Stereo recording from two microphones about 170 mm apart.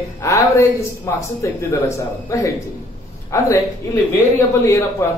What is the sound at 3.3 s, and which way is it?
Speech, 15° left (ahead or behind).